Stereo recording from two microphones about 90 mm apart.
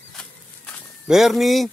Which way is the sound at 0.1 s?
10° left (ahead or behind).